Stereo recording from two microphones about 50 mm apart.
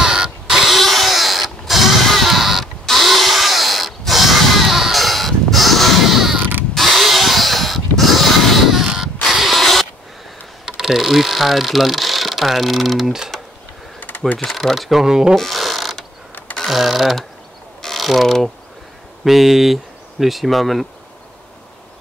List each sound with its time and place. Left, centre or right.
0.0 s vehicle: centre
2.6 s a sound: centre
10.6 s speech: centre
13.9 s a sound: left
14.6 s speech: centre
15.3 s a sound: centre
16.6 s speech: centre
17.9 s mechanisms: centre
19.2 s speech: centre